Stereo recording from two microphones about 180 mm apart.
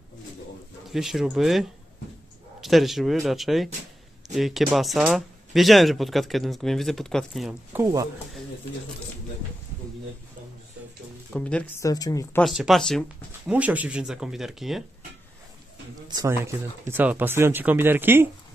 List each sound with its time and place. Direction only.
0.8 s speech: centre (ahead or behind)
7.7 s speech: 20° right (ahead or behind)
11.3 s speech: 5° left (ahead or behind)
11.8 s speech: 20° left (ahead or behind)
12.4 s speech: centre (ahead or behind)
13.5 s speech: 10° right (ahead or behind)
16.1 s speech: 20° right (ahead or behind)